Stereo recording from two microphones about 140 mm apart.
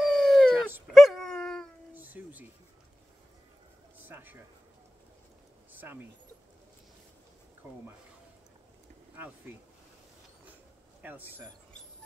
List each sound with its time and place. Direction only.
0.0 s dog: centre (ahead or behind)
2.0 s music: 10° right (ahead or behind)
4.0 s a sound: 15° right (ahead or behind)
5.7 s a sound: 15° right (ahead or behind)
9.5 s a man's voice: 15° right (ahead or behind)
11.0 s a man's voice: 15° right (ahead or behind)